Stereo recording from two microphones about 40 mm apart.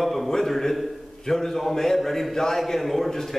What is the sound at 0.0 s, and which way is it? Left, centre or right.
A man's voice, centre.